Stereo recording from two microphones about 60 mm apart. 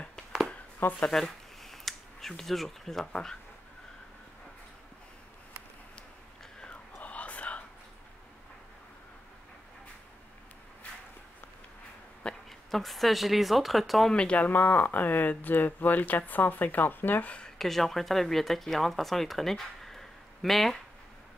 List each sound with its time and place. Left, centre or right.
0.7 s speech: left
1.0 s a sound: centre
3.1 s speech: centre
6.6 s whispering: left
12.4 s speech: centre
14.1 s speech: centre
17.6 s speech: centre